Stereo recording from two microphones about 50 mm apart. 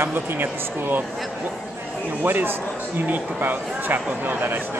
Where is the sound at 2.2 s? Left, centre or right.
Right.